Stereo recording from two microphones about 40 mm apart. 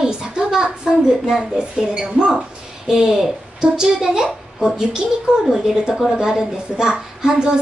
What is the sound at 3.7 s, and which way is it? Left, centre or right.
A woman's voice, centre.